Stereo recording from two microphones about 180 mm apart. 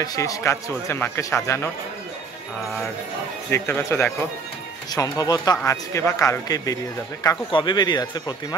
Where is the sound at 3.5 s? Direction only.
15° left (ahead or behind).